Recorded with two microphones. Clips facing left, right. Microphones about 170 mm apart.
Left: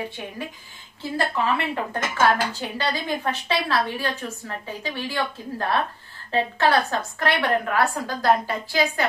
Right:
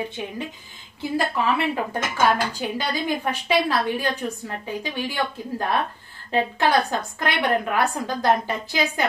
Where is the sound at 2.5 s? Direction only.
15° right (ahead or behind).